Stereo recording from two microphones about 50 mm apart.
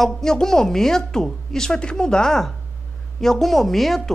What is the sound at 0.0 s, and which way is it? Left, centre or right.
A woman's voice, centre.